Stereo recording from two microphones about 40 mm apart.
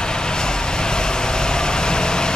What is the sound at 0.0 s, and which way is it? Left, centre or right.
Vehicle, centre.